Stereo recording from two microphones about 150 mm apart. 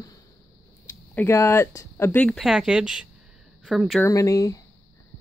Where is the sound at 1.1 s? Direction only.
15° left (ahead or behind).